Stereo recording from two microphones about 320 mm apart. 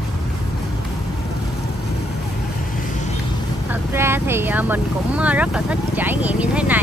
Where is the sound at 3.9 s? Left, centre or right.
Centre.